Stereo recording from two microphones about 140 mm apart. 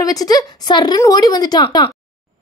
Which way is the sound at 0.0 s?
25° left (ahead or behind).